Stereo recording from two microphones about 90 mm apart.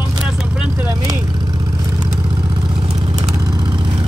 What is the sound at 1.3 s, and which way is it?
Vehicle, 55° right (ahead or behind).